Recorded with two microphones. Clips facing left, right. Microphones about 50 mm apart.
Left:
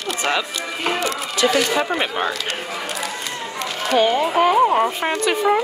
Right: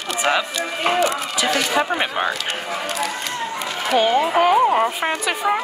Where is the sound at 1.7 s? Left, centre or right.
Centre.